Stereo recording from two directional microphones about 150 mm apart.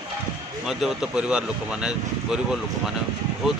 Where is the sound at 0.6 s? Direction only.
5° right (ahead or behind).